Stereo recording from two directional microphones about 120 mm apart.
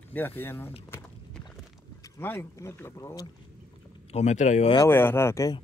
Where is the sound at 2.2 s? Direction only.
20° left (ahead or behind).